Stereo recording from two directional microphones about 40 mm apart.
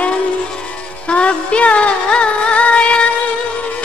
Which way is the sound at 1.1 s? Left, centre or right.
Left.